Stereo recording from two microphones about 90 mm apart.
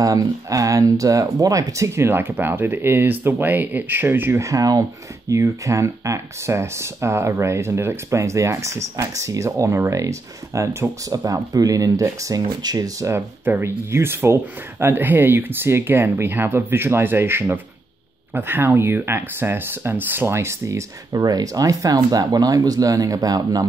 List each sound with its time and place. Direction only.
0.0 s speech: 40° right (ahead or behind); by 4.4 s 20° right (ahead or behind)
4.4 s speech: 40° right (ahead or behind)
13.1 s speech: 25° right (ahead or behind); by 23.6 s 45° right (ahead or behind)